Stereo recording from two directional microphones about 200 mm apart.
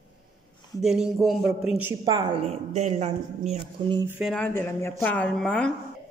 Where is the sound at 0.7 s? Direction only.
Centre (ahead or behind); by 4.0 s 30° right (ahead or behind).